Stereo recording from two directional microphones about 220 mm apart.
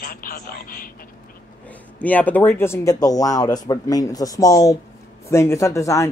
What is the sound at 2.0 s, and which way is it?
Speech, 5° left (ahead or behind).